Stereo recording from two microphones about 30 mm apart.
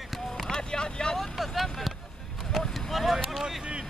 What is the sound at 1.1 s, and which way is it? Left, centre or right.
Speech, centre.